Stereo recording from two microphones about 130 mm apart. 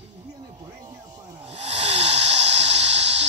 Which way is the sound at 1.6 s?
55° right (ahead or behind).